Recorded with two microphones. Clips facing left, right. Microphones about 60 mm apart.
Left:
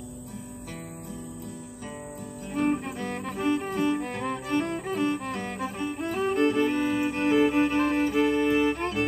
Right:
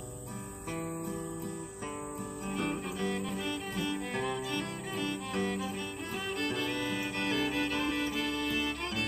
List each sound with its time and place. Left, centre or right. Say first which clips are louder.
2.5 s music: left 9 dB; left